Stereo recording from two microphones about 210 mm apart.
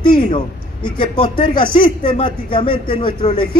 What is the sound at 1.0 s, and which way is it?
Speech, 25° left (ahead or behind).